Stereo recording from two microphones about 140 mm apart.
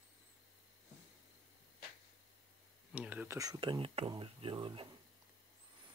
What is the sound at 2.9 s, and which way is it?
Speech, 10° right (ahead or behind).